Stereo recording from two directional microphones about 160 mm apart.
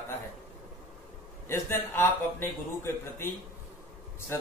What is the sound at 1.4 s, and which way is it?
A man's voice, 15° left (ahead or behind).